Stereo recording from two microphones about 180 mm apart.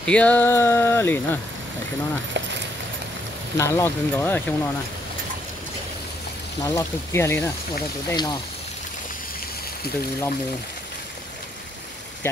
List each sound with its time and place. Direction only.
0.0 s speech: 5° left (ahead or behind)
3.5 s speech: 15° left (ahead or behind)
6.6 s speech: 15° left (ahead or behind)